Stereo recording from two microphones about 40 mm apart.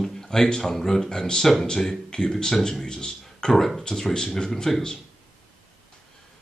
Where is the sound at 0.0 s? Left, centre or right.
Centre.